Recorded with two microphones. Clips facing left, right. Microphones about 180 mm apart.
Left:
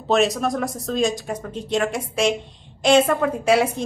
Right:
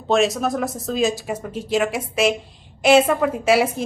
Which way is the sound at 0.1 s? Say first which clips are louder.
Right 1 dB; centre (ahead or behind).